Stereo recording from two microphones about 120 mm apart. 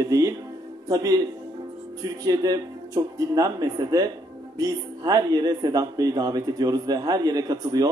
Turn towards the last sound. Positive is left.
turn(degrees=-30)  # may be behind; listen again after turning